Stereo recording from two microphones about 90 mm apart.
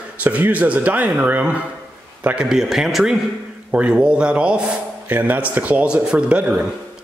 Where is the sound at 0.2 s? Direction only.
20° right (ahead or behind).